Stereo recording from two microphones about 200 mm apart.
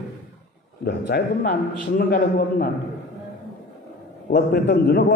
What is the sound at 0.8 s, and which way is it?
A man's voice, 55° left (ahead or behind).